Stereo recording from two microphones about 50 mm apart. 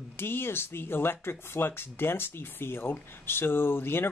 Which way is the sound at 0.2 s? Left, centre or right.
Left.